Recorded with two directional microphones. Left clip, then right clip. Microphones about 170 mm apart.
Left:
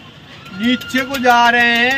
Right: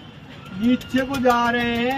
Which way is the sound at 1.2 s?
10° left (ahead or behind).